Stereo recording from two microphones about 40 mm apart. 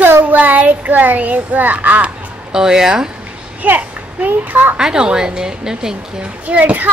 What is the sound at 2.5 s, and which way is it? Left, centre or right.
Speech, centre.